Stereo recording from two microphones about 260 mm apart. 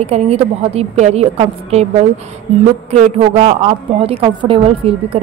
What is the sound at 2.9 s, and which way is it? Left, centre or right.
A woman's voice, right.